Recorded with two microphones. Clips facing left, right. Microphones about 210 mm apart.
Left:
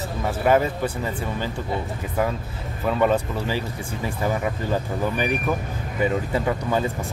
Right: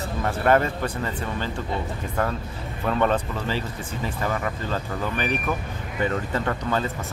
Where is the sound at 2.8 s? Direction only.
5° left (ahead or behind).